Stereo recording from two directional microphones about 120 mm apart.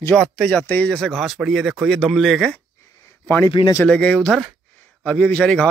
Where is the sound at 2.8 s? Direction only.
25° left (ahead or behind).